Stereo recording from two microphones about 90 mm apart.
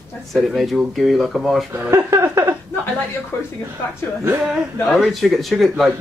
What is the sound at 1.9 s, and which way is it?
Speech, 35° right (ahead or behind).